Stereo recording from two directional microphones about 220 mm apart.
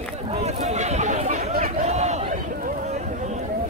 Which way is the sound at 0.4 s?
30° right (ahead or behind).